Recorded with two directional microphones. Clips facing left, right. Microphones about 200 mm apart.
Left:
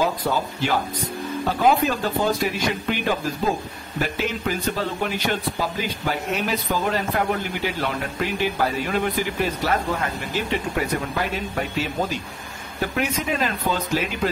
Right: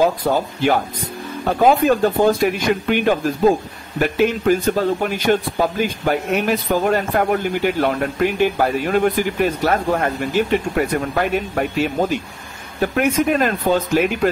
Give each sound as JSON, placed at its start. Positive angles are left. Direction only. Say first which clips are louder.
{"t": 0.0, "sound": "speech", "louder": "right 6 dB", "side_deg": -50}